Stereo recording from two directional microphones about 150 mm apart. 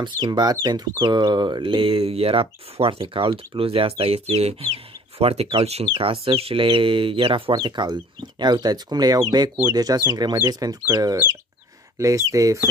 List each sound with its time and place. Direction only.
0.0 s speech: 30° right (ahead or behind)